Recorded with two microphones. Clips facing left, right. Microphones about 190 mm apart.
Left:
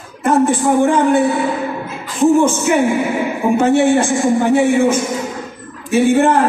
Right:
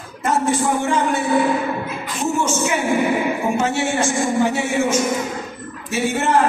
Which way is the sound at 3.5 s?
55° left (ahead or behind).